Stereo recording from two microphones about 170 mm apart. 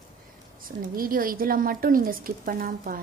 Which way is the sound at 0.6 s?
55° right (ahead or behind).